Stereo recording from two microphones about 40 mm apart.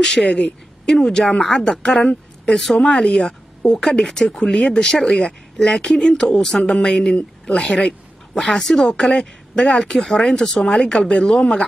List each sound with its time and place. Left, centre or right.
0.0 s speech: centre
3.7 s speech: centre
5.9 s speech: left
7.6 s speech: centre